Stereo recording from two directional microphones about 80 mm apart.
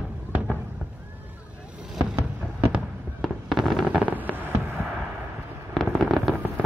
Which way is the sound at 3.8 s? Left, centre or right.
Centre.